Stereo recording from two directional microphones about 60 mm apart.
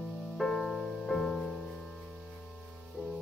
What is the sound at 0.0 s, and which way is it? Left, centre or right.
Music, centre.